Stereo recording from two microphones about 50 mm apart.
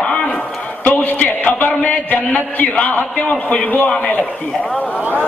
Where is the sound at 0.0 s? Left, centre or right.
Left.